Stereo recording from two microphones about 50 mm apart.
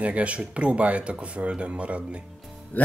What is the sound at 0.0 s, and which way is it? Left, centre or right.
Speech, right.